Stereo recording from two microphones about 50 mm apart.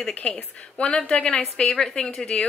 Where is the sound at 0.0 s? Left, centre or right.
Left.